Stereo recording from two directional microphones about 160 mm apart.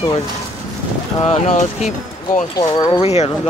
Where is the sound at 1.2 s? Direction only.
40° left (ahead or behind).